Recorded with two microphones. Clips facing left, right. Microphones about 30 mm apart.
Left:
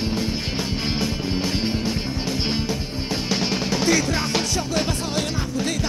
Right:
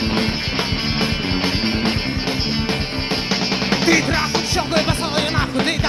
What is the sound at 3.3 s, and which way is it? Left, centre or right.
Music, right.